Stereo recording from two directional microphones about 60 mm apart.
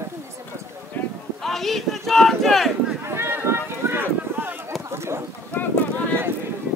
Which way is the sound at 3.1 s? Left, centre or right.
Right.